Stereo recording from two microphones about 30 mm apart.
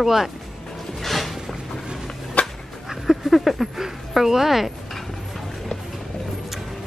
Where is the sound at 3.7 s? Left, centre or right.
Centre.